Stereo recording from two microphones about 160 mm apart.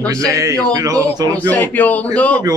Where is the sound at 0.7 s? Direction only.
20° right (ahead or behind).